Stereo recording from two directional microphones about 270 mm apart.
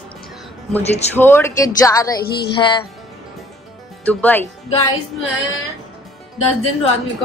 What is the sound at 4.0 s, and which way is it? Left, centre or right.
Speech, centre.